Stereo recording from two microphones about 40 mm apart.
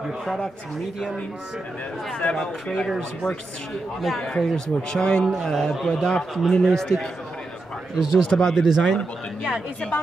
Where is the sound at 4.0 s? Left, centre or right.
Centre.